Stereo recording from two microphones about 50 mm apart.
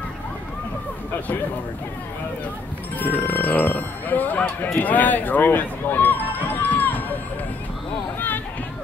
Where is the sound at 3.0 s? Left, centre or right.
Left.